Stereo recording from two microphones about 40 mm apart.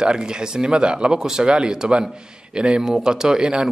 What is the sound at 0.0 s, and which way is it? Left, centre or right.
A man's voice, centre.